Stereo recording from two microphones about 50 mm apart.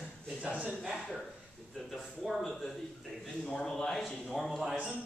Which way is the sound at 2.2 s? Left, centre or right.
Centre.